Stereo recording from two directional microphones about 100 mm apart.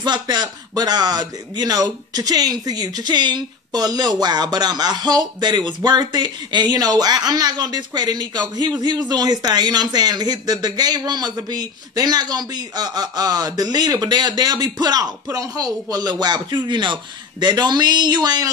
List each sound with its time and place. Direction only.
0.0 s speech: 45° right (ahead or behind)